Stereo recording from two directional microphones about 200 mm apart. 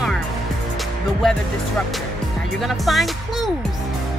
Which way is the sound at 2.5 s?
Centre (ahead or behind).